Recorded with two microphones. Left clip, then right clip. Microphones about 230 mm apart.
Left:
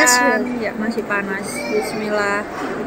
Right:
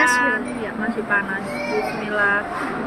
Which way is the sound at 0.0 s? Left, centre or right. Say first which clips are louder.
Left 3 dB; left.